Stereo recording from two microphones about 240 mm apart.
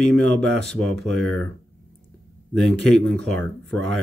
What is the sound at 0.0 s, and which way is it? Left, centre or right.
Speech, centre.